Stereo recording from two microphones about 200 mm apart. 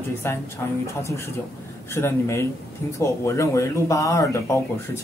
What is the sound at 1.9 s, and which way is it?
Speech, 15° left (ahead or behind).